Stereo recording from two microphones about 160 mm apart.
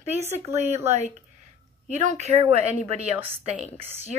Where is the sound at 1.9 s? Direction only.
45° right (ahead or behind).